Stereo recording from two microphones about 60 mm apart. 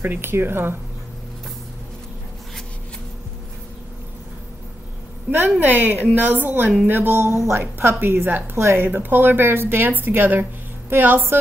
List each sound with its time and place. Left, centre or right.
0.0 s a woman's voice: right
5.3 s a woman's voice: right
8.0 s a woman's voice: right